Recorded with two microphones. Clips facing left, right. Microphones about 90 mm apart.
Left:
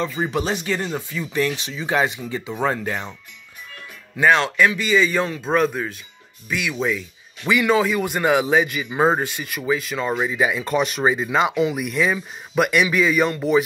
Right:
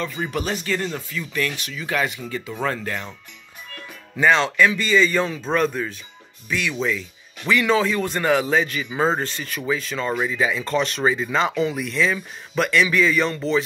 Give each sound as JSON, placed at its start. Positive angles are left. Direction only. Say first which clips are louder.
{"t": 0.0, "sound": "speech", "louder": "left 3 dB", "side_deg": 30}
{"t": 0.4, "sound": "speech", "louder": "right 1 dB", "side_deg": 15}
{"t": 1.3, "sound": "speech", "louder": "left 4 dB", "side_deg": 30}
{"t": 4.2, "sound": "speech", "louder": "left 1 dB", "side_deg": 5}